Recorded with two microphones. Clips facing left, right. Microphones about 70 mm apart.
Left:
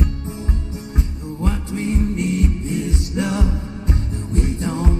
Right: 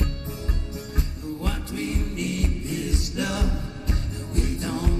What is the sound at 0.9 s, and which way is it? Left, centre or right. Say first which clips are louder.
Music: left 4 dB; left.